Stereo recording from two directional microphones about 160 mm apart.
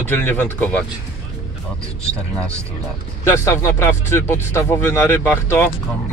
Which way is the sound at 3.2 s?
15° left (ahead or behind).